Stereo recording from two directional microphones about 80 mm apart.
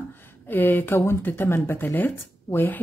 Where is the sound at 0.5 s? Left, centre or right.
Left.